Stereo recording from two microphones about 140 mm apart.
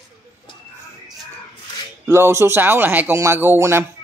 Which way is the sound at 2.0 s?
20° right (ahead or behind).